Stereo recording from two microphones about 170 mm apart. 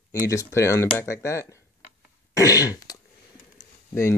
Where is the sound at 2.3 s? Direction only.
20° left (ahead or behind).